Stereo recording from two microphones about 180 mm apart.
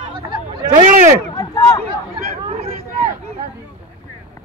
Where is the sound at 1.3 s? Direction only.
15° left (ahead or behind).